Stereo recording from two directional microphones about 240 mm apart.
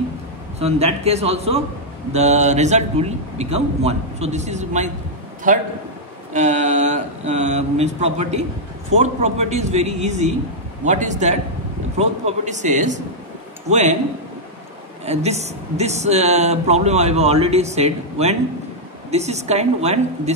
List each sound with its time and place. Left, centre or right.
0.6 s a man's voice: right
15.0 s speech: right